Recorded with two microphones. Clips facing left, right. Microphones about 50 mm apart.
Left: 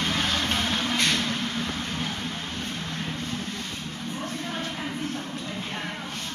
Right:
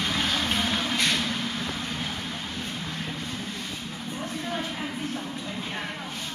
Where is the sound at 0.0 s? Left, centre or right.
Centre.